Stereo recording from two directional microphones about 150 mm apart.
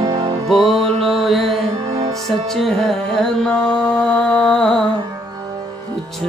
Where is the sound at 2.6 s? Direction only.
Centre (ahead or behind).